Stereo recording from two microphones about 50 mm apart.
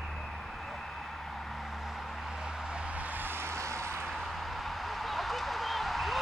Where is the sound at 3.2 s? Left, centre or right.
Right.